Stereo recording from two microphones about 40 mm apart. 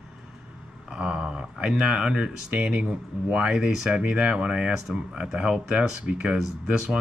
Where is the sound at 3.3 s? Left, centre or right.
Centre.